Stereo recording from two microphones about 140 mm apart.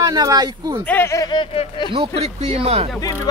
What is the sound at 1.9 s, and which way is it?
Speech, 45° right (ahead or behind).